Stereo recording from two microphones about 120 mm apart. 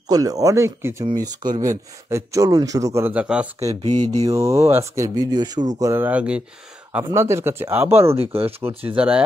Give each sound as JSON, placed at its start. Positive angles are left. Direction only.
{"t": 0.1, "sound": "speech", "side_deg": -30}
{"t": 1.1, "sound": "speech", "side_deg": -35}
{"t": 3.2, "sound": "speech", "side_deg": -10}
{"t": 3.8, "sound": "mantra", "side_deg": -70}
{"t": 4.2, "sound": "speech", "side_deg": -25}
{"t": 6.0, "sound": "speech", "side_deg": -10}
{"t": 7.1, "sound": "speech", "side_deg": -25}
{"t": 8.2, "sound": "speech", "side_deg": -55}
{"t": 8.9, "sound": "speech", "side_deg": -10}